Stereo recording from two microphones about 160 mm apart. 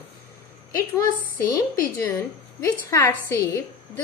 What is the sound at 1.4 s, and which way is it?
A woman's voice, 20° left (ahead or behind).